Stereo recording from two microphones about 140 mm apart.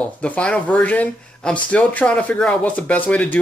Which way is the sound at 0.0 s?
10° left (ahead or behind).